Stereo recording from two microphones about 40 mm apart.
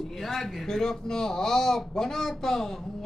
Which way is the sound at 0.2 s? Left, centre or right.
Centre.